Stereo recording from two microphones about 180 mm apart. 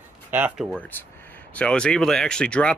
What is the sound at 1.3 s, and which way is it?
Speech, 10° left (ahead or behind).